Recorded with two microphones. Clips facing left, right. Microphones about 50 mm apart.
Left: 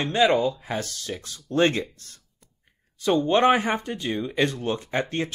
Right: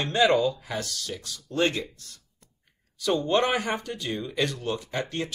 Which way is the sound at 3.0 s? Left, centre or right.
Left.